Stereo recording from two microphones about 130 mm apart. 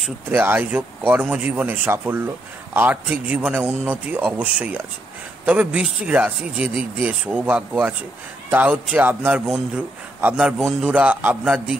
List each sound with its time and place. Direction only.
0.3 s a man's voice: 15° right (ahead or behind)